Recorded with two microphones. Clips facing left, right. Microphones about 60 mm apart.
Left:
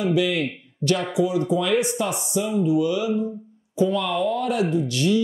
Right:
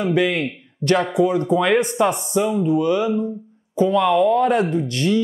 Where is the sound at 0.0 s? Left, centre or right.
Right.